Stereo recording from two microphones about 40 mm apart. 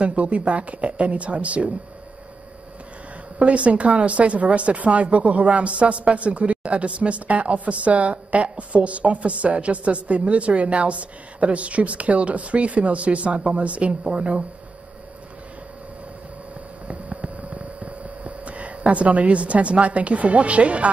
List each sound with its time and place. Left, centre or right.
0.0 s speech: right
3.3 s speech: right
16.8 s a sound: right